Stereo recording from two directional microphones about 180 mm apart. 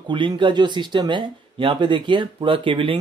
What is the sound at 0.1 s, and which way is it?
Speech, 25° right (ahead or behind).